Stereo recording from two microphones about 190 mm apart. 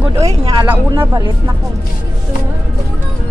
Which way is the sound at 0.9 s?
20° right (ahead or behind).